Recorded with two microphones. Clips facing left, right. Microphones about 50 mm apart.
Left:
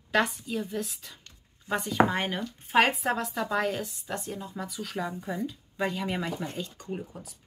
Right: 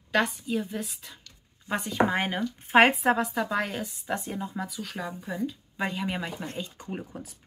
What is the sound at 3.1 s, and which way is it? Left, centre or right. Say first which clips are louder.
Speech: right 2 dB; centre.